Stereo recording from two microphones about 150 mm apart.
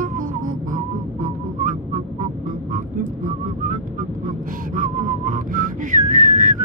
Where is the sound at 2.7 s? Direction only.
60° right (ahead or behind).